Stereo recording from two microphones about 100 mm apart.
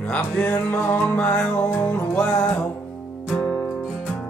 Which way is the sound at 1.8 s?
25° left (ahead or behind).